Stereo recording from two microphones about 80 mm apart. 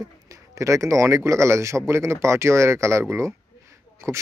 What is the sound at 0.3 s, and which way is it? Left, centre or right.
Speech, right.